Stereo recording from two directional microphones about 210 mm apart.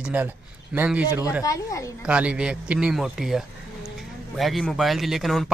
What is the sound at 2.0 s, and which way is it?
Speech, 5° right (ahead or behind).